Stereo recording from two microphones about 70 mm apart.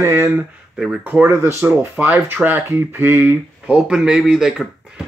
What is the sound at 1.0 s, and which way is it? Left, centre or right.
Speech, right.